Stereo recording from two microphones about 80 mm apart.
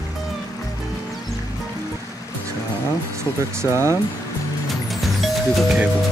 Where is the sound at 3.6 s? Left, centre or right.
Right.